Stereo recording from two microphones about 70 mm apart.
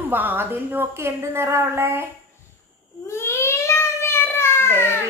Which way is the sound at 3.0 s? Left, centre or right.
Left.